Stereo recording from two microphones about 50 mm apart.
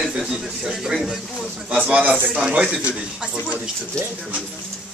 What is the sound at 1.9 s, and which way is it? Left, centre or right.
Speech, right.